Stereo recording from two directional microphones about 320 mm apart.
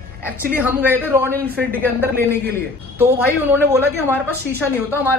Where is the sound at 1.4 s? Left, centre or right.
Right.